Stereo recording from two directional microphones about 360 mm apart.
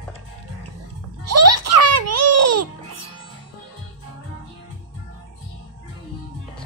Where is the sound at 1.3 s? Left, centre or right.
Right.